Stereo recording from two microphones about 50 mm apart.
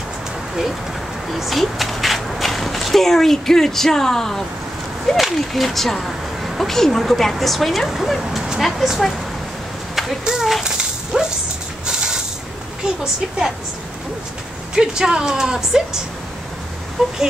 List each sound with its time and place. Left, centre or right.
1.3 s speech: centre
10.2 s speech: centre
10.6 s a sound: centre
11.8 s music: centre
14.8 s speech: centre
17.0 s speech: centre